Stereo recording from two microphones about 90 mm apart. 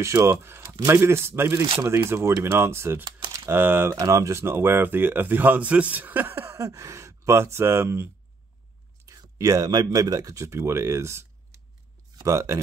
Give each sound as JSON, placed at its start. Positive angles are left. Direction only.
{"t": 0.0, "sound": "speech", "side_deg": -30}
{"t": 4.0, "sound": "speech", "side_deg": -35}
{"t": 9.0, "sound": "speech", "side_deg": -40}